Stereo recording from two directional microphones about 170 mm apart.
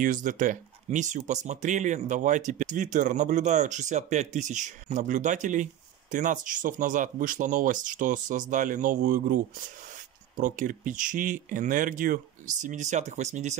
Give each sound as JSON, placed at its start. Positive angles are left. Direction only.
{"t": 0.0, "sound": "speech", "side_deg": -50}